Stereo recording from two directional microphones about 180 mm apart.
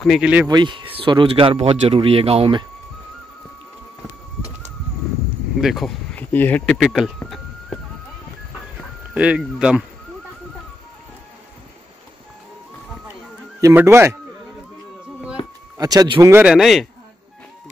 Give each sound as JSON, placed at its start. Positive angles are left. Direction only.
{"t": 0.0, "sound": "speech", "side_deg": 0}
{"t": 0.5, "sound": "speech", "side_deg": -25}
{"t": 5.6, "sound": "speech", "side_deg": 0}
{"t": 9.1, "sound": "speech", "side_deg": -5}
{"t": 13.6, "sound": "speech", "side_deg": -15}
{"t": 15.8, "sound": "speech", "side_deg": -20}